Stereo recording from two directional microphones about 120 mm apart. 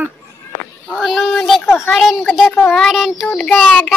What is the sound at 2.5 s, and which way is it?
Speech, 20° left (ahead or behind).